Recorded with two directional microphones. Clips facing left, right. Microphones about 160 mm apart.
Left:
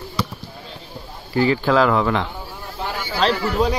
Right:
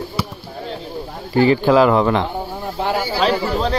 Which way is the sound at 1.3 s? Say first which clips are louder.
Right 4 dB; 25° right (ahead or behind).